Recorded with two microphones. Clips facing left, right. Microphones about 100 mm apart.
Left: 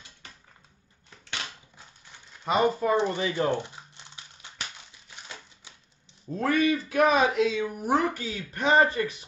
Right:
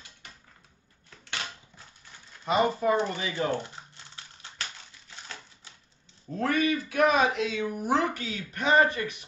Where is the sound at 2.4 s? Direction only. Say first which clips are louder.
Left 1 dB; 25° left (ahead or behind).